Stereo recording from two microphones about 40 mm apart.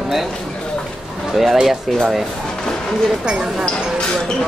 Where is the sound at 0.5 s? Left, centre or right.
Left.